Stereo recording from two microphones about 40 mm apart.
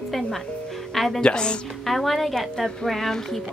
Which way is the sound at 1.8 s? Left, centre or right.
Centre.